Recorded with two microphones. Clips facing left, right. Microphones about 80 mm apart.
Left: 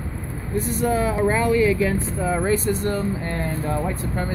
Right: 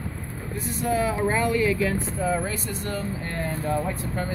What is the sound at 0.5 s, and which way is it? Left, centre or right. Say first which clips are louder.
Speech: left 4 dB; left.